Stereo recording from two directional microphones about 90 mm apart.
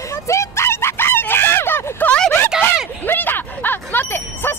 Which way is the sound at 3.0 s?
20° left (ahead or behind).